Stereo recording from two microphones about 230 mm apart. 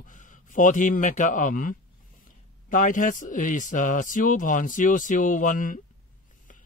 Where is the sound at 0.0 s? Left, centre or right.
Left.